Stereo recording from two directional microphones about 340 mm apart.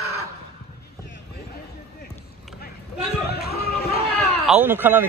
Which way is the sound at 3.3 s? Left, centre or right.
Left.